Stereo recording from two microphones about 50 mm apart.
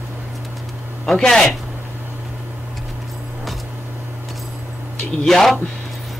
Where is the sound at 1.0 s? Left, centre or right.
Centre.